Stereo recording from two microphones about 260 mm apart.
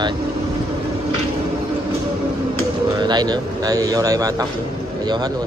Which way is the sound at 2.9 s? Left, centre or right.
Centre.